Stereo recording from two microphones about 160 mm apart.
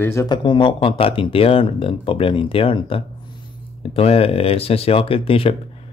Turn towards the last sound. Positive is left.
turn(degrees=35)  # may be behind; listen again after turning